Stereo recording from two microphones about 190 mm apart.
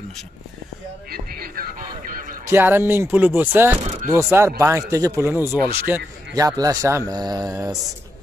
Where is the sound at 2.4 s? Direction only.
10° right (ahead or behind).